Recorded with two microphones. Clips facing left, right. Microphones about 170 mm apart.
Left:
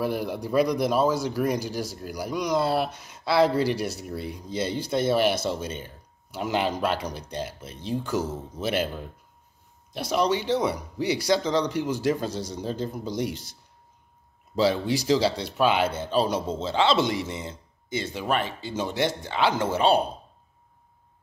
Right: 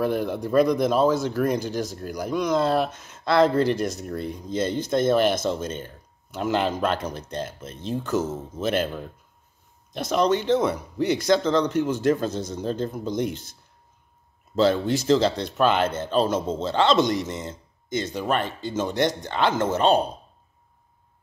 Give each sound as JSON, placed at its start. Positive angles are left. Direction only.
{"t": 0.0, "sound": "speech", "side_deg": 10}
{"t": 10.1, "sound": "speech", "side_deg": 10}
{"t": 14.5, "sound": "speech", "side_deg": 10}
{"t": 17.3, "sound": "a sound", "side_deg": -50}
{"t": 17.9, "sound": "speech", "side_deg": 5}